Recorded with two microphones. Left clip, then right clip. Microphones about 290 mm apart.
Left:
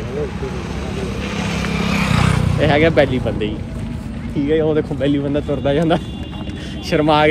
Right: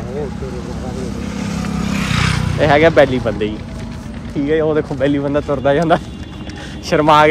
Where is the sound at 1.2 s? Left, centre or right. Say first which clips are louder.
Left 2 dB; left.